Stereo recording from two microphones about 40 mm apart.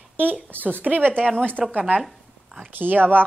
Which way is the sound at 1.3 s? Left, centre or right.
Left.